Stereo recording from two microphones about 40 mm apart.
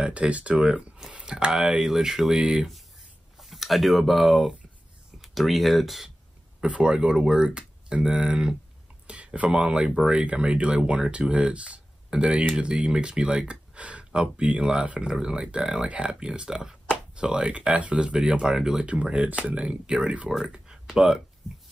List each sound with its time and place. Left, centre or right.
0.0 s speech: right
1.5 s speech: centre
3.3 s speech: centre
6.6 s speech: right
9.0 s speech: right
15.0 s speech: centre
18.9 s speech: right
20.4 s a sound: right
20.7 s a sound: centre